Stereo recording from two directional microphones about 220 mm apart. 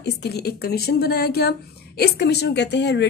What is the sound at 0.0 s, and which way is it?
A woman's voice, 50° left (ahead or behind).